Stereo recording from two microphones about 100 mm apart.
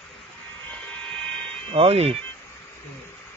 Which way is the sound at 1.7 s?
80° right.